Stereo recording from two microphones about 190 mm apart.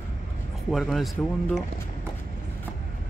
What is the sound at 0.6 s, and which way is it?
Speech, centre (ahead or behind).